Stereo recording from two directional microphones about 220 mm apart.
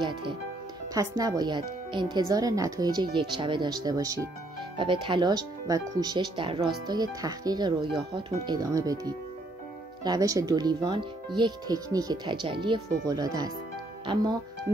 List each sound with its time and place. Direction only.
0.0 s music: 20° right (ahead or behind)
0.9 s speech: 15° right (ahead or behind)